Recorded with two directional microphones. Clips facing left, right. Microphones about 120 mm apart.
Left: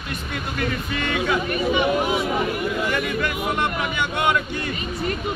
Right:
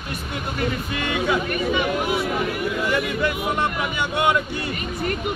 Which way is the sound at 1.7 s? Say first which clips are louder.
Left 3 dB; 20° left (ahead or behind).